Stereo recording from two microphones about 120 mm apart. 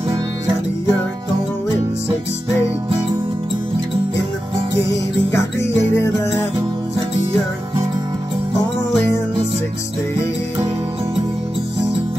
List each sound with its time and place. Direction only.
5.3 s music: 20° left (ahead or behind)